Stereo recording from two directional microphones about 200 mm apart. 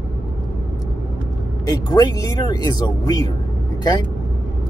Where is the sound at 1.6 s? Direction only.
20° left (ahead or behind).